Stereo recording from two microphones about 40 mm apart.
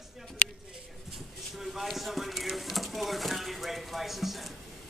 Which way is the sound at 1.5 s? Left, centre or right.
Centre.